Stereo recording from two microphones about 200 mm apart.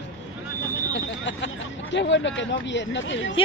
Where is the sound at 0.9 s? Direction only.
65° left (ahead or behind).